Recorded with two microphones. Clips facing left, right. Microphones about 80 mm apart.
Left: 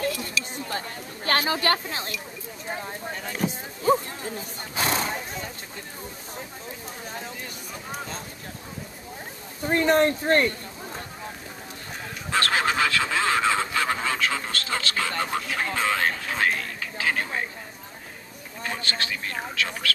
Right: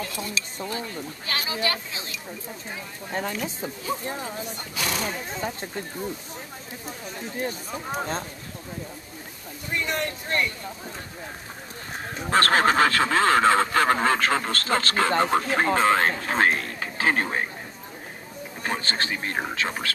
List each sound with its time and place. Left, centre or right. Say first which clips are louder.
0.1 s a sound: left 1 dB; right
0.7 s a sound: right 1 dB; left
4.0 s speech: right 4 dB; right
4.7 s speech: left 3 dB; left
5.3 s speech: right 5 dB; right
7.3 s speech: right 8 dB; right
9.7 s speech: left 8 dB; left
12.2 s speech: right 4 dB; right
18.6 s speech: right 2 dB; right